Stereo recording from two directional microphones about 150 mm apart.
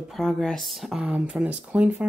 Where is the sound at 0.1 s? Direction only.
5° left (ahead or behind).